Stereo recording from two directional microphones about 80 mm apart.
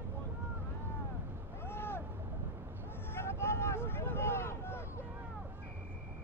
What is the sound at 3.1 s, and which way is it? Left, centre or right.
Vehicle, left.